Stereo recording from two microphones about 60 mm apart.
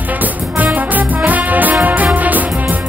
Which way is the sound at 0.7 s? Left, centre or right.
Right.